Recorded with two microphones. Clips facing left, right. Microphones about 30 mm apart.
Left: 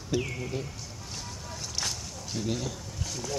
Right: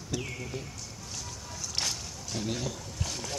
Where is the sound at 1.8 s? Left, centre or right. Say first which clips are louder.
Right 1 dB; right.